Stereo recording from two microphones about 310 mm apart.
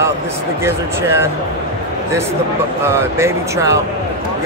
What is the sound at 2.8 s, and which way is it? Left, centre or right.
Speech, centre.